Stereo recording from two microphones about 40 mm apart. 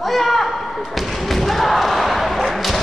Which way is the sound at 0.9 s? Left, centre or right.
Centre.